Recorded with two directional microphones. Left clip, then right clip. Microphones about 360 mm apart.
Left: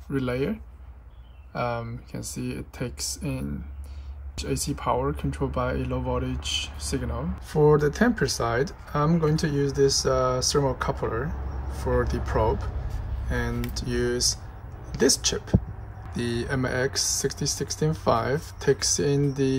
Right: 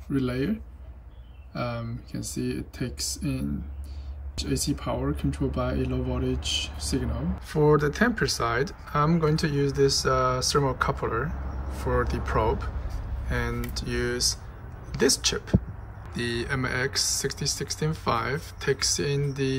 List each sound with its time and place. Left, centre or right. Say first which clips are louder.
0.2 s speech: left 3 dB; centre
2.3 s speech: right 3 dB; centre
4.6 s speech: left 4 dB; centre